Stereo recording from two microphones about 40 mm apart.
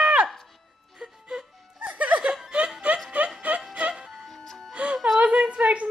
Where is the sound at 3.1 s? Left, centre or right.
Right.